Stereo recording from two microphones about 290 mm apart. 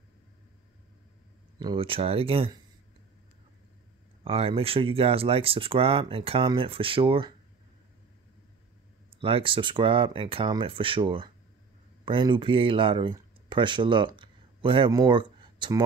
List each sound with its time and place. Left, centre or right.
1.6 s speech: centre
4.2 s speech: centre
9.2 s speech: centre